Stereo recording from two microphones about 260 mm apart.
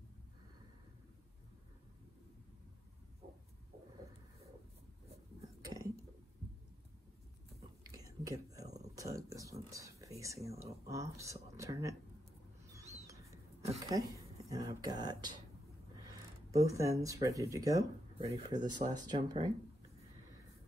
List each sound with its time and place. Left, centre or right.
5.7 s a sound: centre
7.8 s whispering: centre
8.8 s speech: centre
13.0 s a sound: centre
13.8 s speech: centre
16.5 s speech: centre